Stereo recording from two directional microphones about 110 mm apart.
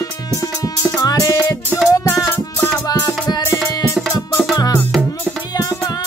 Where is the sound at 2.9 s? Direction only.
35° left (ahead or behind).